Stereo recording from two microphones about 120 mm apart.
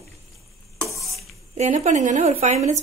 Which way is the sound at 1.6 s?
80° right.